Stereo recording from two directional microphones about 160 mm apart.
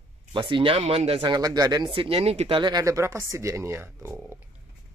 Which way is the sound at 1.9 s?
35° right (ahead or behind).